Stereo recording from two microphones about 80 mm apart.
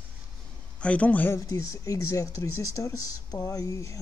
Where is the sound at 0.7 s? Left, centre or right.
Centre.